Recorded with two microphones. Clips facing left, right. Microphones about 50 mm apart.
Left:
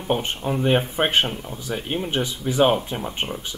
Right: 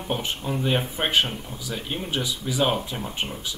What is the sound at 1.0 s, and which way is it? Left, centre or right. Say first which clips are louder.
Speech: left 5 dB; centre.